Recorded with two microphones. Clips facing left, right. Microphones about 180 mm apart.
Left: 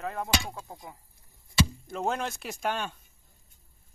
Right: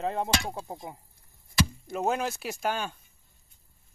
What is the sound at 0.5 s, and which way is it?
Speech, 25° right (ahead or behind).